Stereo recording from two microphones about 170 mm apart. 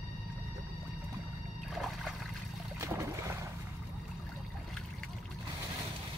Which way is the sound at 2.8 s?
15° right (ahead or behind).